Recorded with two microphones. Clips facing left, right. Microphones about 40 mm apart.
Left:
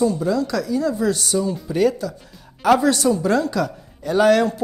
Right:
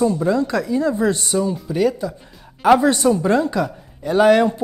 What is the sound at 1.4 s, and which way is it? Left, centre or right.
Speech, centre.